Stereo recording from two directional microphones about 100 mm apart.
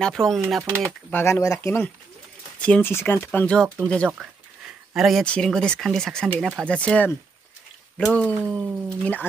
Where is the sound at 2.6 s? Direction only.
10° left (ahead or behind).